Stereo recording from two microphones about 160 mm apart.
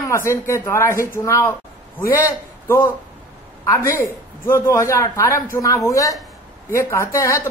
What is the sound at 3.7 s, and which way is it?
Speech, 15° left (ahead or behind).